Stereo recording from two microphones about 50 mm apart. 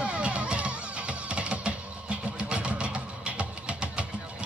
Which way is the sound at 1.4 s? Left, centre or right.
Right.